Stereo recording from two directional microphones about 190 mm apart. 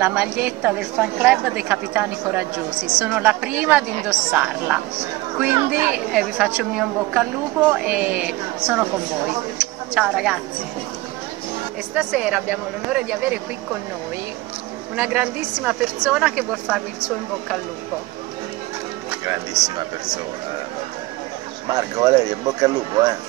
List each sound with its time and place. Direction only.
0.0 s a woman's voice: 10° right (ahead or behind)
11.9 s a woman's voice: 5° right (ahead or behind)
15.0 s a woman's voice: 5° right (ahead or behind)
19.5 s speech: 20° right (ahead or behind)
21.6 s speech: 20° right (ahead or behind)